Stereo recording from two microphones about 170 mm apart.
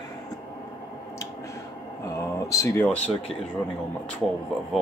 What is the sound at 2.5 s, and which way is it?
Speech, 15° left (ahead or behind).